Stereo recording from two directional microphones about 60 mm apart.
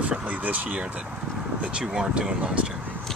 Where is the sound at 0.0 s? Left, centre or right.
Right.